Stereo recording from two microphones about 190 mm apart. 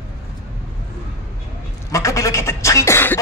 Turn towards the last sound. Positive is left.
turn(degrees=15)  # may be behind; listen again after turning